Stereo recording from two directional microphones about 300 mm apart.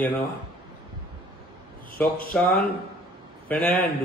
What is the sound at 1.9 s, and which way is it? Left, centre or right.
Speech, left.